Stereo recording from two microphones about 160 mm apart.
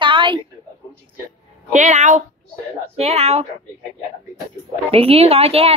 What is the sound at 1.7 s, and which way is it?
A woman's voice, 45° right (ahead or behind).